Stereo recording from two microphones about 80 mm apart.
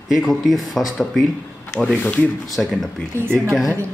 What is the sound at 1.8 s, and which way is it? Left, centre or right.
Speech, centre.